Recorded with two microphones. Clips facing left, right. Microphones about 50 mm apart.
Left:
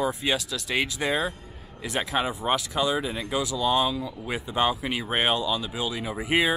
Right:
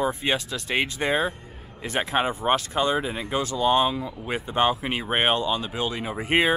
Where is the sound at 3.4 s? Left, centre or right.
Right.